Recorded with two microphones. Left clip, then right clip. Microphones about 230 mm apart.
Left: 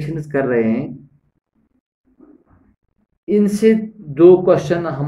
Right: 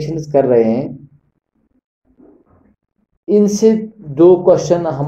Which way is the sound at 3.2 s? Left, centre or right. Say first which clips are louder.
Right 4 dB; left.